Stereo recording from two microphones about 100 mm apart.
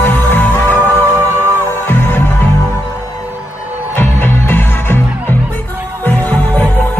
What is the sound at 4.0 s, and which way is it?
Music, 20° left (ahead or behind).